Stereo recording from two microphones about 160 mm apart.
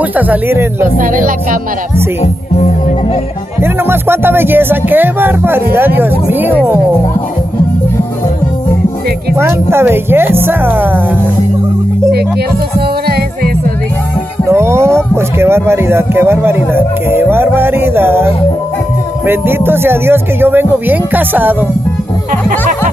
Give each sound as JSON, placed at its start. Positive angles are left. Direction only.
{"t": 0.3, "sound": "speech", "side_deg": -15}
{"t": 0.9, "sound": "speech", "side_deg": -60}
{"t": 2.2, "sound": "speech", "side_deg": 40}
{"t": 3.6, "sound": "speech", "side_deg": -15}
{"t": 9.4, "sound": "speech", "side_deg": -15}
{"t": 14.5, "sound": "a sound", "side_deg": -15}
{"t": 15.1, "sound": "speech", "side_deg": -15}